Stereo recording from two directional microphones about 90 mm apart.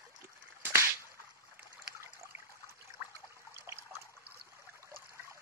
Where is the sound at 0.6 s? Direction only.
25° right (ahead or behind).